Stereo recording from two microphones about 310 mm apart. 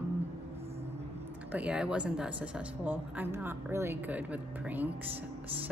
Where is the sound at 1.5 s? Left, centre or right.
Centre.